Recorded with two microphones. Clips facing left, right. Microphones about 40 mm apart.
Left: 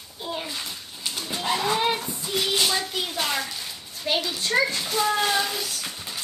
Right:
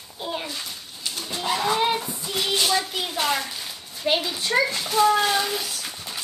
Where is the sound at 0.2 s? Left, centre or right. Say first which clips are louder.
Right 2 dB; centre.